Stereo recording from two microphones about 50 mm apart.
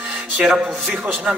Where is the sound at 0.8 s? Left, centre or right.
Right.